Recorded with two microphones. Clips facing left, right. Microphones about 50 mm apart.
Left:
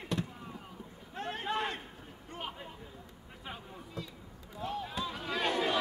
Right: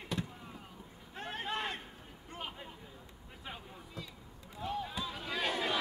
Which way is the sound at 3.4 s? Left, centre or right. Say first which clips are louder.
Left 2 dB; centre.